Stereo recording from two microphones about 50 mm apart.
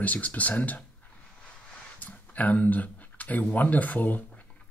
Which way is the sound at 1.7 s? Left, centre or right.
Left.